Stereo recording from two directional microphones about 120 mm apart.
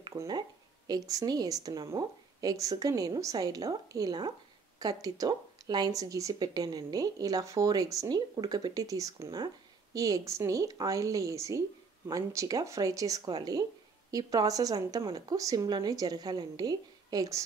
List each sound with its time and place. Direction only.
0.0 s a woman's voice: 35° right (ahead or behind)